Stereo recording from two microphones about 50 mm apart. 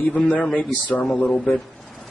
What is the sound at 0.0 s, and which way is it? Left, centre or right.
A man's voice, left.